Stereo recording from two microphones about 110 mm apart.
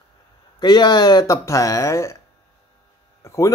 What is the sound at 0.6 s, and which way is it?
Speech, 40° left (ahead or behind).